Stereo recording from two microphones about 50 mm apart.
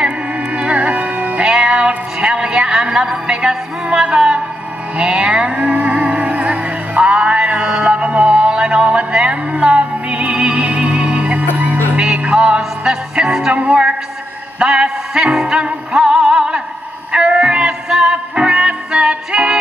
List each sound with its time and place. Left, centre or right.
0.6 s music: right
1.5 s music: centre